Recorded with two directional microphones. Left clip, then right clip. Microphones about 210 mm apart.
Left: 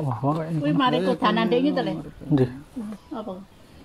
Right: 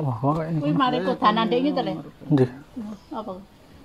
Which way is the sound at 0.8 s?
30° left (ahead or behind).